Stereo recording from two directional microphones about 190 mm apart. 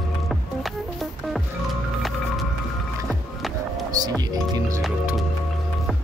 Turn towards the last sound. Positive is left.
turn(degrees=0)  # may be behind; listen again after turning